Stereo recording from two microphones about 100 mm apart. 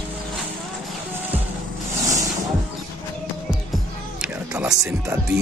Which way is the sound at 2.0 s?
35° right (ahead or behind).